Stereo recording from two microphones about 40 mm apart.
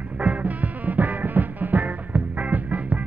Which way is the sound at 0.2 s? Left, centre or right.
Right.